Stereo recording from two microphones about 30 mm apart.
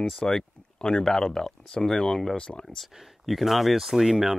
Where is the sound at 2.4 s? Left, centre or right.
Left.